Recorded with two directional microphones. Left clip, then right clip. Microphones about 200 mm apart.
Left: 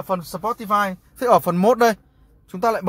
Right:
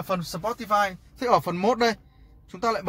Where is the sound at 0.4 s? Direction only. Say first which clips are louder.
Left 3 dB; 50° left (ahead or behind).